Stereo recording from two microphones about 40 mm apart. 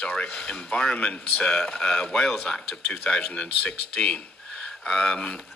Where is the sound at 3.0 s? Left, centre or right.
Left.